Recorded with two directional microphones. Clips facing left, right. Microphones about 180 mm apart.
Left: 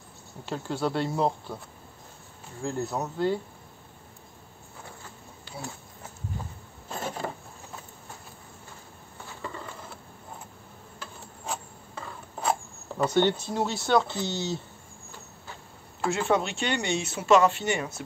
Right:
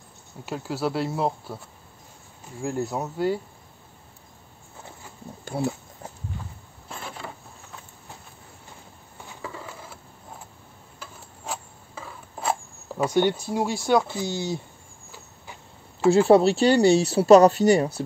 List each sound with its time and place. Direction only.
0.5 s speech: 5° right (ahead or behind)
2.8 s speech: 5° right (ahead or behind)
5.5 s speech: 60° right (ahead or behind)
6.9 s insect: 40° left (ahead or behind)
9.4 s coin: 5° right (ahead or behind)
11.0 s filing: centre (ahead or behind)
16.1 s speech: 35° right (ahead or behind)